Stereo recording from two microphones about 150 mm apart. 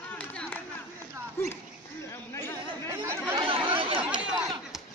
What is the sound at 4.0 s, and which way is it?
Chatter, 5° right (ahead or behind).